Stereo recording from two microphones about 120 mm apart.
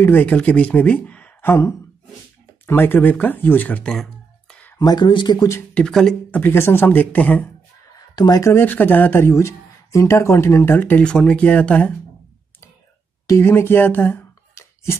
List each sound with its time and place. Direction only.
0.0 s speech: 15° left (ahead or behind)
4.7 s speech: 35° left (ahead or behind)
5.8 s speech: 5° left (ahead or behind)
6.3 s speech: 20° left (ahead or behind)
8.2 s speech: 30° left (ahead or behind); by 11.9 s 10° left (ahead or behind)
13.3 s speech: 20° left (ahead or behind)